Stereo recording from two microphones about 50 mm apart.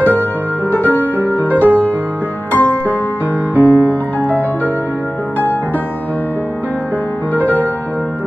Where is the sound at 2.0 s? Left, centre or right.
Right.